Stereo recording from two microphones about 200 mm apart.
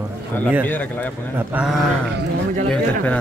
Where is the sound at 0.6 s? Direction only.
10° left (ahead or behind).